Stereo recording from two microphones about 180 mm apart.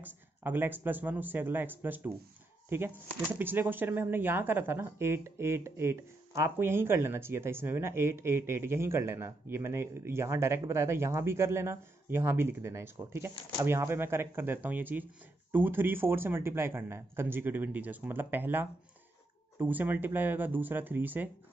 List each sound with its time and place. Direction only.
0.0 s speech: 10° right (ahead or behind)